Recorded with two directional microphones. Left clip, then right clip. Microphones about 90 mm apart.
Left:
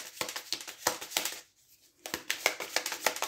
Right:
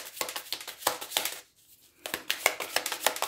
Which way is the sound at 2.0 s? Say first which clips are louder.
Right 3 dB; 25° right (ahead or behind).